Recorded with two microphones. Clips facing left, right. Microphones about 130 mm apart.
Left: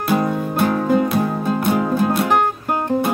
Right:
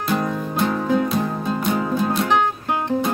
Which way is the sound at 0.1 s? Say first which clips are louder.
Left 4 dB; 5° left (ahead or behind).